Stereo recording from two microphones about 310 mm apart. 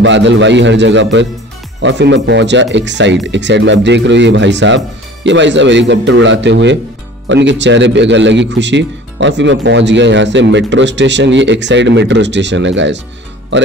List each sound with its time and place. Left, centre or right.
0.0 s a man's voice: right